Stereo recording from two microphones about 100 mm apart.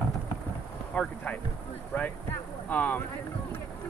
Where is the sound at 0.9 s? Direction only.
10° left (ahead or behind).